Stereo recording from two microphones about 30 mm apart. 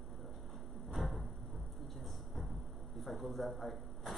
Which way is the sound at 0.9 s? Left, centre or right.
Centre.